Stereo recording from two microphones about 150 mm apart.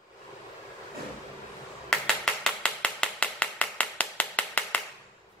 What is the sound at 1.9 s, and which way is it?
Finger snapping, 5° left (ahead or behind).